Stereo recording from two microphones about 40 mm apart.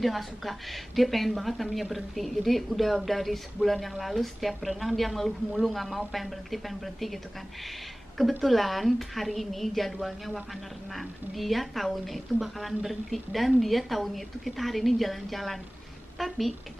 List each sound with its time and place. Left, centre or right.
0.0 s speech: centre
8.2 s speech: centre